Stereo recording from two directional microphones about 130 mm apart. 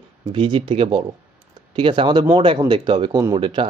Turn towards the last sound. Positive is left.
turn(degrees=-40)  # may be behind; listen again after turning